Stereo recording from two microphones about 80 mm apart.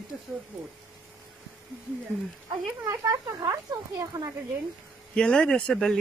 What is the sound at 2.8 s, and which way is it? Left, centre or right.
Speech, right.